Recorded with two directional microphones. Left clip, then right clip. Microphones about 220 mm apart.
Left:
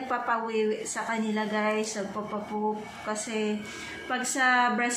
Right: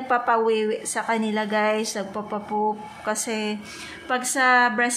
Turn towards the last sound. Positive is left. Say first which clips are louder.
# right 5 dB
turn(degrees=-40)  # may be behind; listen again after turning